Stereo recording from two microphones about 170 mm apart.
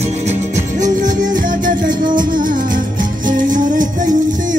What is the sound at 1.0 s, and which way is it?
Music, 50° right (ahead or behind).